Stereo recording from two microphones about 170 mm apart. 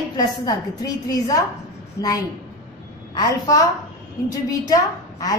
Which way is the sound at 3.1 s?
20° left (ahead or behind).